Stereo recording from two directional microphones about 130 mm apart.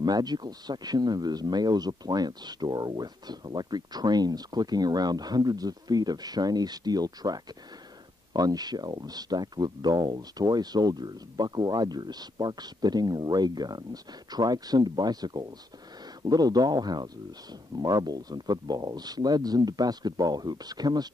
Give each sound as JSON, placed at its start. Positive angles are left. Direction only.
{"t": 0.0, "sound": "speech", "side_deg": -30}